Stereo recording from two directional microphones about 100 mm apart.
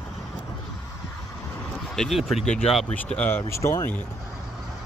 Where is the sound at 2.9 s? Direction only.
15° left (ahead or behind).